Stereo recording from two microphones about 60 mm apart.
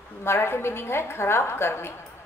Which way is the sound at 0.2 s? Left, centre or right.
Left.